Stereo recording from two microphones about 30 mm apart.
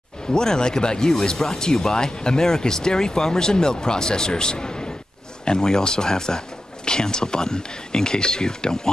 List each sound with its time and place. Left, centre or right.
0.3 s speech: left